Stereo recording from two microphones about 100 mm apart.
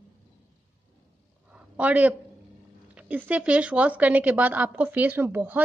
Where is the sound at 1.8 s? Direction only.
15° right (ahead or behind).